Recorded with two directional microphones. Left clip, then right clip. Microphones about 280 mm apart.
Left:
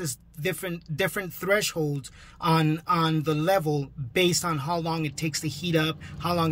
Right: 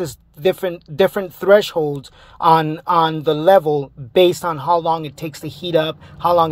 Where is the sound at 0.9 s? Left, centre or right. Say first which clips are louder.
Right 12 dB; right.